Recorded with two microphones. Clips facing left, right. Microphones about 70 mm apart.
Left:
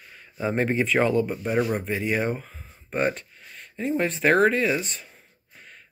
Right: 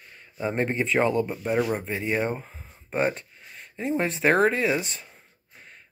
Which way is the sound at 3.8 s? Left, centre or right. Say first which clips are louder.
Left 1 dB; centre.